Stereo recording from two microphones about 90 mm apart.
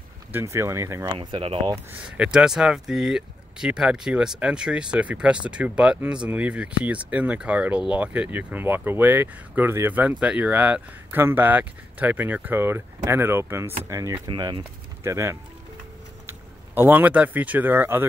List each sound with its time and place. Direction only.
0.5 s speech: 30° right (ahead or behind)
1.1 s speech: 70° right (ahead or behind)
2.0 s speech: 10° right (ahead or behind)